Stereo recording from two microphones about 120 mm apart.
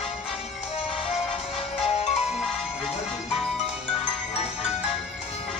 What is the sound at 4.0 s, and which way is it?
Music, 60° left (ahead or behind).